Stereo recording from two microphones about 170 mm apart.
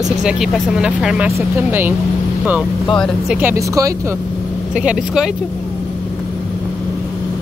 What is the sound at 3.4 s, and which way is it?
Speech, 15° right (ahead or behind).